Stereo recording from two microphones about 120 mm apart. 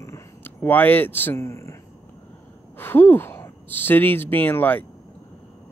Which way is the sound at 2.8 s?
15° left (ahead or behind).